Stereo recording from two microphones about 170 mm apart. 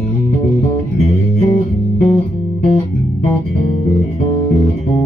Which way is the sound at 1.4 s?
40° left (ahead or behind).